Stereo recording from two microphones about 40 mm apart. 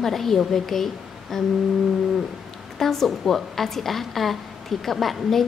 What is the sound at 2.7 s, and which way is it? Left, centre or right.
A woman's voice, centre.